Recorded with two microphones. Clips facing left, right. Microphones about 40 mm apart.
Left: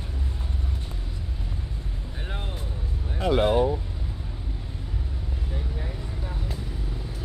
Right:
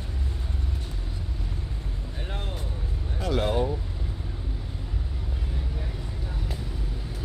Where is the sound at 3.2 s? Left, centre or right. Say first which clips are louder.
Left 5 dB; left.